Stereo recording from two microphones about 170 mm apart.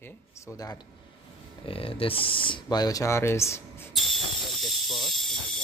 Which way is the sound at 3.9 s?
Centre (ahead or behind).